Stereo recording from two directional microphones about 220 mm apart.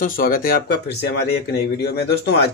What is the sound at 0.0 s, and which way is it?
Speech, 40° left (ahead or behind).